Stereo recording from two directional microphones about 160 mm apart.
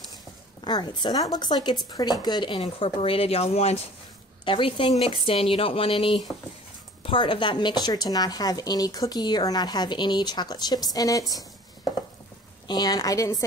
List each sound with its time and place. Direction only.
0.6 s a woman's voice: 25° left (ahead or behind)
12.6 s a woman's voice: 25° left (ahead or behind)